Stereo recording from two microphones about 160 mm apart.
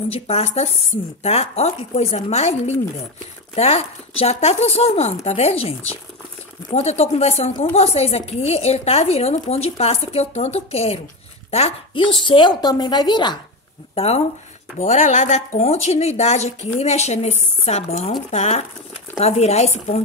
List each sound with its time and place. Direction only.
0.1 s a woman's voice: 40° left (ahead or behind)
13.9 s a woman's voice: 40° left (ahead or behind)